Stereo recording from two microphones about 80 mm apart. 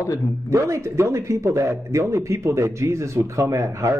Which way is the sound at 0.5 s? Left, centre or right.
Right.